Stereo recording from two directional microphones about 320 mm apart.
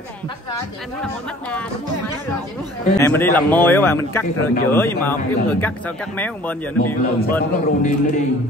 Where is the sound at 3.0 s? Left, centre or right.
Centre.